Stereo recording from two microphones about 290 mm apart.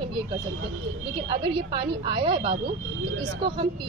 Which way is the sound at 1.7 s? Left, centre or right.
Centre.